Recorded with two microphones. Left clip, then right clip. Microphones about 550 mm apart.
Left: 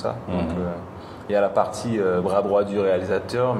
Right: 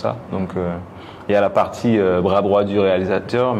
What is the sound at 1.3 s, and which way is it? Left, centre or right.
A man's voice, right.